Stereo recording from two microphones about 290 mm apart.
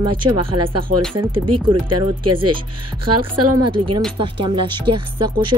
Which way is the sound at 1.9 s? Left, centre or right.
Right.